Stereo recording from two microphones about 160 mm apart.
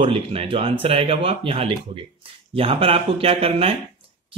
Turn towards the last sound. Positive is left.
turn(degrees=-40)  # may be behind; listen again after turning